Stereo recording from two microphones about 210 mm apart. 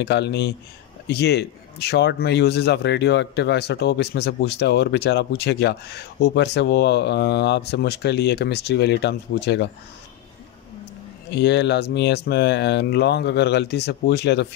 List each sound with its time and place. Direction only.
0.0 s speech: 55° left (ahead or behind)
11.2 s speech: 55° left (ahead or behind)